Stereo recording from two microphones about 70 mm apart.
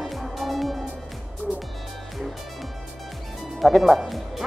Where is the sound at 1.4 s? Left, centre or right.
Centre.